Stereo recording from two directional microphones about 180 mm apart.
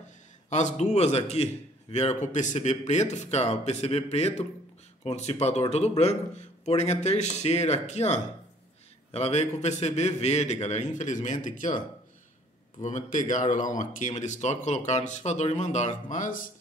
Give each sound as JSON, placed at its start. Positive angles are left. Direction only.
{"t": 0.5, "sound": "a man's voice", "side_deg": 40}
{"t": 12.8, "sound": "a man's voice", "side_deg": 45}